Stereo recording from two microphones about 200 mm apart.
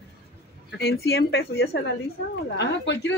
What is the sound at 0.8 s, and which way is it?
Speech, 55° left (ahead or behind).